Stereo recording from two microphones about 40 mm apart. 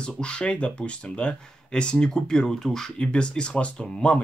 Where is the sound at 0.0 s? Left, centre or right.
Left.